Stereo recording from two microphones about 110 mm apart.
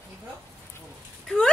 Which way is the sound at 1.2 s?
5° left (ahead or behind).